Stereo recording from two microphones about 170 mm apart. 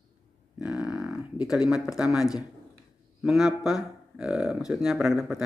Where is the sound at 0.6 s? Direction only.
5° right (ahead or behind).